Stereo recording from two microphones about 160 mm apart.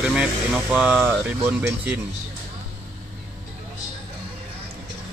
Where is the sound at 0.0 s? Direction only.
5° right (ahead or behind).